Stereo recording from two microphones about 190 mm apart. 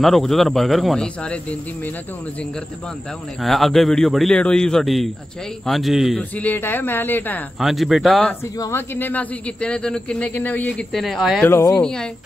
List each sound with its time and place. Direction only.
0.0 s a man's voice: centre (ahead or behind)
3.4 s a man's voice: centre (ahead or behind)
7.6 s a man's voice: centre (ahead or behind)
8.5 s speech: 15° left (ahead or behind)
11.4 s speech: 15° left (ahead or behind)
11.8 s a man's voice: 5° left (ahead or behind)